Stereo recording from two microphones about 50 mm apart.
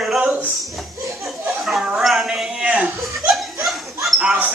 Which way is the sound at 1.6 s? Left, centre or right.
Centre.